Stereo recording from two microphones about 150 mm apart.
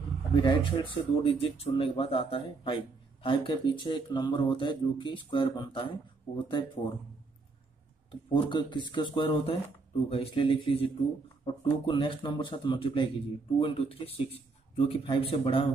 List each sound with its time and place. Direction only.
0.4 s speech: 35° left (ahead or behind)
8.1 s speech: 30° left (ahead or behind)